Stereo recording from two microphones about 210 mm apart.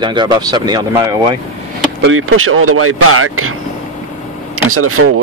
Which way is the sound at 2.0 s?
75° right (ahead or behind).